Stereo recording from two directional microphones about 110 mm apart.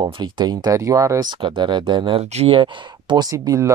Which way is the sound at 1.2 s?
50° right (ahead or behind).